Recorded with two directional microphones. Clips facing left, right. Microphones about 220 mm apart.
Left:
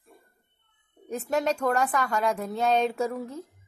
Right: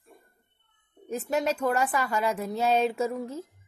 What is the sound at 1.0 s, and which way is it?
A woman's voice, centre (ahead or behind).